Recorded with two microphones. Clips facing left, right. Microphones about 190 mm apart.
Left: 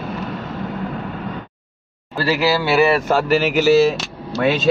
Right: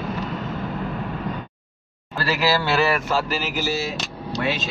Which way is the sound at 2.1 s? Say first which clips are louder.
Left 4 dB; 15° left (ahead or behind).